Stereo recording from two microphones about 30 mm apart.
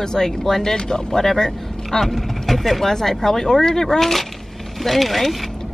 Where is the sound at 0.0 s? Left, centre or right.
Centre.